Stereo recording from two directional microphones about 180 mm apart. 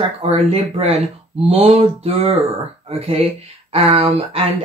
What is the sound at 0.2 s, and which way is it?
Speech, 35° right (ahead or behind).